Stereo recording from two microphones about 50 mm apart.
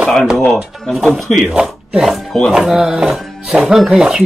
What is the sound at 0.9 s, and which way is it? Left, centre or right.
Speech, centre.